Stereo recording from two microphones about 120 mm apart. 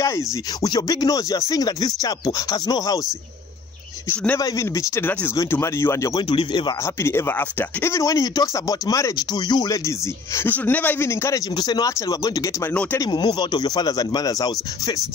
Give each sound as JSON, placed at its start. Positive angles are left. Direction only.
{"t": 0.0, "sound": "speech", "side_deg": 30}
{"t": 4.4, "sound": "speech", "side_deg": 30}
{"t": 6.1, "sound": "speech", "side_deg": 40}
{"t": 6.8, "sound": "speech", "side_deg": 20}
{"t": 10.5, "sound": "speech", "side_deg": 15}
{"t": 11.5, "sound": "speech", "side_deg": 35}